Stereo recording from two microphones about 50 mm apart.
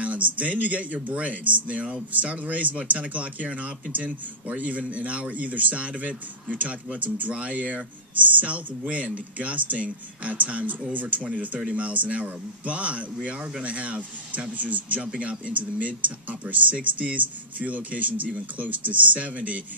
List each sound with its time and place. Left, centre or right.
0.0 s speech: right